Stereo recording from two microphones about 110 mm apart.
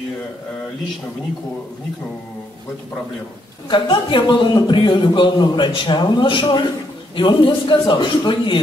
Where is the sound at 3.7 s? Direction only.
45° left (ahead or behind).